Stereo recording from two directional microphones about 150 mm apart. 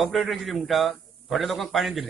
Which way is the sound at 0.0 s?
Centre (ahead or behind).